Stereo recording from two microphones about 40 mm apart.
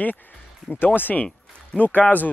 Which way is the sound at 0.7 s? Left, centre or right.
Centre.